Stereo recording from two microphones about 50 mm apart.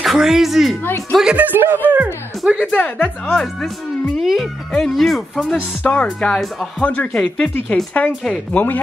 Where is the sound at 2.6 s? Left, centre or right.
Left.